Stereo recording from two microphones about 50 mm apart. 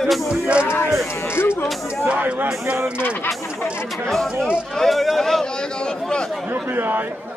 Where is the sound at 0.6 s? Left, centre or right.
Left.